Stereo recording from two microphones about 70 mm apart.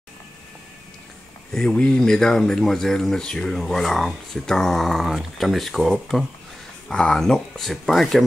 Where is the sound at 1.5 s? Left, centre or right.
Centre.